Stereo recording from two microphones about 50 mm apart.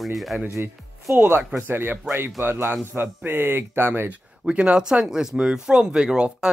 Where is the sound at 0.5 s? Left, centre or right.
Right.